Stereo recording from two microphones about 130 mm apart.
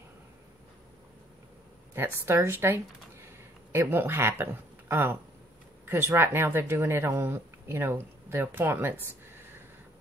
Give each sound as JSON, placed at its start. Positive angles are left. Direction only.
{"t": 2.0, "sound": "speech", "side_deg": -20}